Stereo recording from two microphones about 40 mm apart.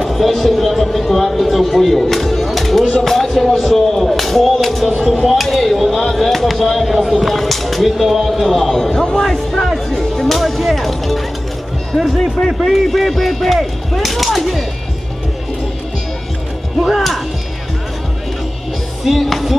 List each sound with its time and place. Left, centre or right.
0.0 s speech: centre
13.6 s a sound: centre
16.8 s speech: centre
19.0 s speech: centre